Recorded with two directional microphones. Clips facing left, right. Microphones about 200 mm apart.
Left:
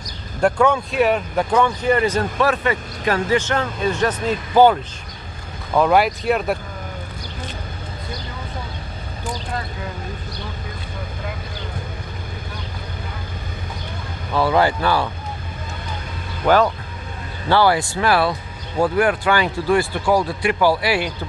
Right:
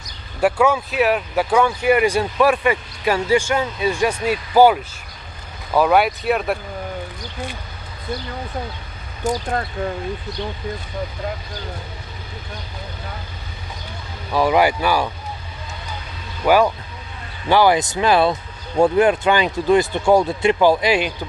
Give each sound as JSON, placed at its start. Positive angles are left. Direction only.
{"t": 0.4, "sound": "speech", "side_deg": -5}
{"t": 14.3, "sound": "speech", "side_deg": -15}
{"t": 16.4, "sound": "speech", "side_deg": -10}